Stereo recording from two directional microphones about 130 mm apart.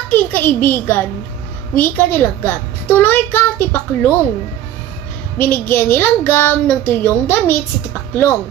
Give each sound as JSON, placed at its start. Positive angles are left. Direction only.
{"t": 0.1, "sound": "a child's voice", "side_deg": 15}
{"t": 5.4, "sound": "a child's voice", "side_deg": 15}